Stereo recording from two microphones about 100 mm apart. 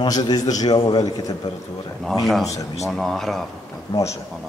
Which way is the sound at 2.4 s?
35° left (ahead or behind).